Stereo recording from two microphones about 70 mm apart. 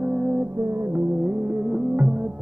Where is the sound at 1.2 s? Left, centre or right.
Right.